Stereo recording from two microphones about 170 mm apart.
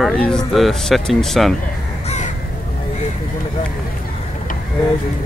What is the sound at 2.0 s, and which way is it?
Crow, 40° left (ahead or behind).